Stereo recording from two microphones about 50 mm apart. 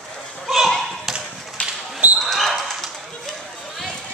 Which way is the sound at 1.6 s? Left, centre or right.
Left.